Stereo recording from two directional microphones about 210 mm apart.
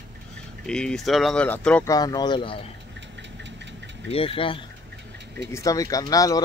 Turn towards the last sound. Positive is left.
turn(degrees=15)  # may be behind; listen again after turning